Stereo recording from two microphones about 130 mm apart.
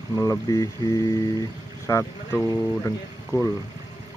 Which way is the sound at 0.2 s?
25° left (ahead or behind).